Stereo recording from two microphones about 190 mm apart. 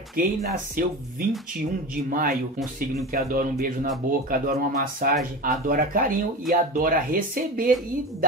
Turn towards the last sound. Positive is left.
turn(degrees=-45)  # may be behind; listen again after turning